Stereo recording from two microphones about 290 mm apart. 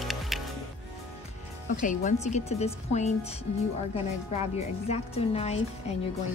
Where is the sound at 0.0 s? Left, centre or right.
Centre.